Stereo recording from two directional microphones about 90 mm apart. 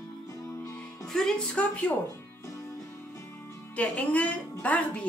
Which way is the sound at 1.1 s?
10° left (ahead or behind).